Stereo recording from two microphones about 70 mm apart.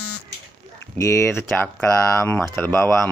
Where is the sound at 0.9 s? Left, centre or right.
Left.